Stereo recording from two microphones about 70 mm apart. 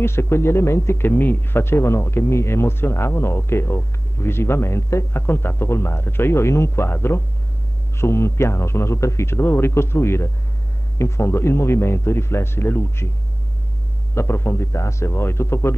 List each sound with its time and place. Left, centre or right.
0.0 s speech: left
14.1 s speech: left